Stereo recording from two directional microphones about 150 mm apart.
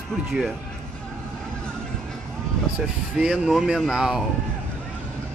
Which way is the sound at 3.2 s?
5° right (ahead or behind).